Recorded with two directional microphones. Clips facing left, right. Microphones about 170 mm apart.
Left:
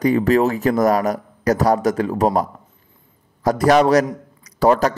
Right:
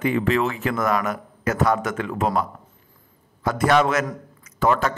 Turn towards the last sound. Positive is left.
turn(degrees=40)  # may be behind; listen again after turning